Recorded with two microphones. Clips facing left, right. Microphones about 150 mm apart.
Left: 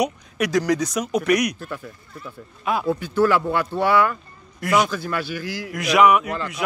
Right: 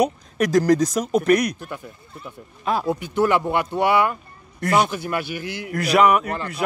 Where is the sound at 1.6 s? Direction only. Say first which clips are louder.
Left 1 dB; 20° right (ahead or behind).